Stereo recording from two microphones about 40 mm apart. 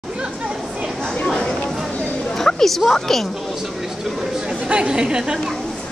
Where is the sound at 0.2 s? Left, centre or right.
Centre.